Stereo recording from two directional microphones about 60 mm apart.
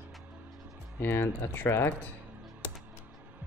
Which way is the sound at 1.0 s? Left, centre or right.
Left.